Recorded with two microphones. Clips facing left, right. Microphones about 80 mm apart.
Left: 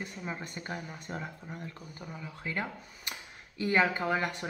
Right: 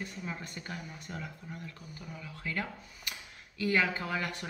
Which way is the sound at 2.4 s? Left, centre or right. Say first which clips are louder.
Left 1 dB; left.